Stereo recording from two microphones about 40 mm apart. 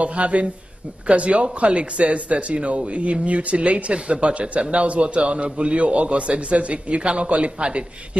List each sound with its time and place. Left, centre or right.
0.0 s speech: right